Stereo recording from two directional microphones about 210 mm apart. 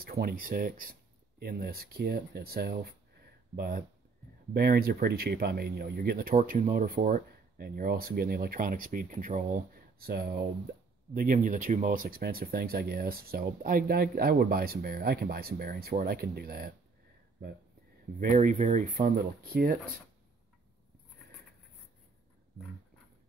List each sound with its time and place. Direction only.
0.0 s speech: 45° right (ahead or behind)
18.2 s speech: 40° right (ahead or behind)